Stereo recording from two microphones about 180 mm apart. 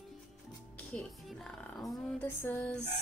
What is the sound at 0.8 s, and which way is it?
Music, 5° left (ahead or behind).